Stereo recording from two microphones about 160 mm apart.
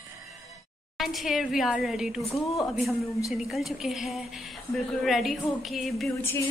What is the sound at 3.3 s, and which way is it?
A woman's voice, centre (ahead or behind).